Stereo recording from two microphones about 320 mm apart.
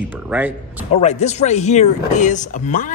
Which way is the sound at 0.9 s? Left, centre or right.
Left.